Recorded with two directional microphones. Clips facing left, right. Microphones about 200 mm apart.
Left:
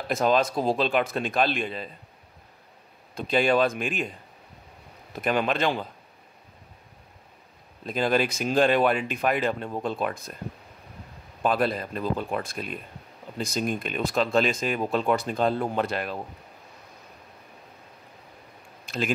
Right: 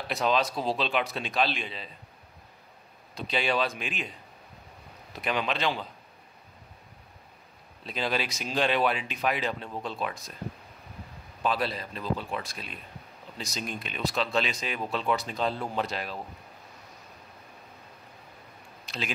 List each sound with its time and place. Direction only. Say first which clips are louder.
0.1 s speech: left 4 dB; 45° left (ahead or behind)
3.2 s speech: left 6 dB; 50° left (ahead or behind)
5.1 s speech: left 5 dB; 50° left (ahead or behind)
7.8 s speech: left 7 dB; 50° left (ahead or behind)
11.4 s speech: left 5 dB; 50° left (ahead or behind)
18.9 s speech: left 8 dB; 50° left (ahead or behind)